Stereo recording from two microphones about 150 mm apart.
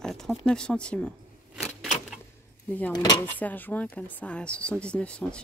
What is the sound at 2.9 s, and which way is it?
Speech, 25° left (ahead or behind).